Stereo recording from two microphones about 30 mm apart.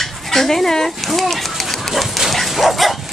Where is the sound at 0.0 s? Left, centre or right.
Centre.